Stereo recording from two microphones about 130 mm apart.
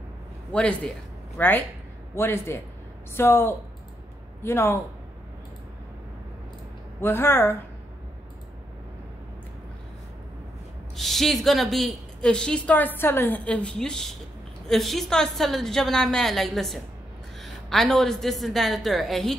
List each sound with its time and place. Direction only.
0.5 s a woman's voice: 5° left (ahead or behind)
7.0 s a woman's voice: 15° left (ahead or behind)
11.0 s a woman's voice: centre (ahead or behind)